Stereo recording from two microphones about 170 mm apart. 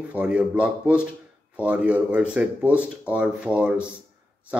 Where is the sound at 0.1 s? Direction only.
5° right (ahead or behind).